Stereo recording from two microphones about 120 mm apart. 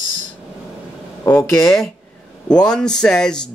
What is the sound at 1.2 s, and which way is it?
Speech, 25° left (ahead or behind).